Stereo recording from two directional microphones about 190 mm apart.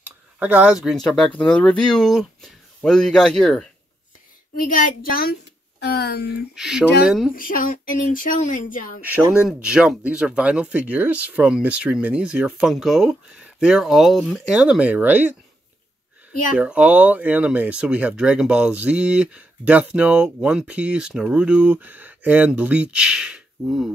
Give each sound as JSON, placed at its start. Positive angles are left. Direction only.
{"t": 0.4, "sound": "speech", "side_deg": -10}
{"t": 4.6, "sound": "speech", "side_deg": 50}
{"t": 6.5, "sound": "speech", "side_deg": 0}
{"t": 7.3, "sound": "speech", "side_deg": 45}
{"t": 9.0, "sound": "speech", "side_deg": -5}
{"t": 16.5, "sound": "speech", "side_deg": -5}